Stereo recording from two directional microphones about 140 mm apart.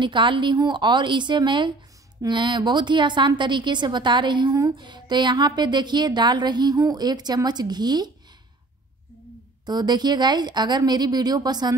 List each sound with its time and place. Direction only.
0.0 s a woman's voice: 35° right (ahead or behind)
9.7 s a woman's voice: 30° right (ahead or behind)